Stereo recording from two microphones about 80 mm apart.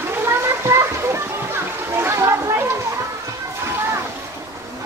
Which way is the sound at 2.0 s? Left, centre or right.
Right.